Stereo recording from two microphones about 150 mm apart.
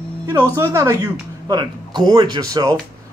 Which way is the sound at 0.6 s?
20° right (ahead or behind).